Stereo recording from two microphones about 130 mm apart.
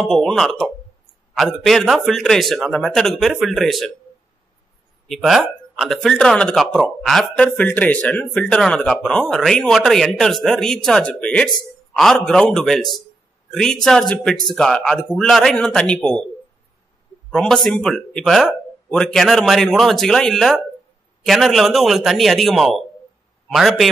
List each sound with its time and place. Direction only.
0.0 s speech: centre (ahead or behind)
5.1 s speech: 5° right (ahead or behind)
17.3 s speech: centre (ahead or behind)